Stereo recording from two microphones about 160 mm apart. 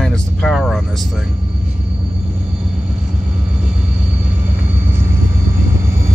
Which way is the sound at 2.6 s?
5° right (ahead or behind).